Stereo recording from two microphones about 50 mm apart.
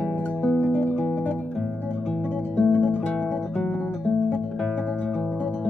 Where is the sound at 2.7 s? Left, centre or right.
Left.